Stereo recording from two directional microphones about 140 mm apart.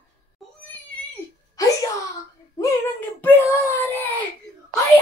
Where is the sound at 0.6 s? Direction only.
10° left (ahead or behind).